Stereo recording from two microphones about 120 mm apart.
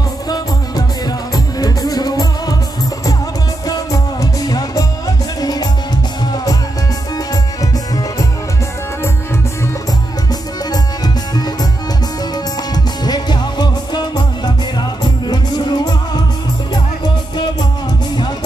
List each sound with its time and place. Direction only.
0.3 s music: 35° left (ahead or behind)
3.6 s music: 30° left (ahead or behind)
12.7 s music: 35° left (ahead or behind)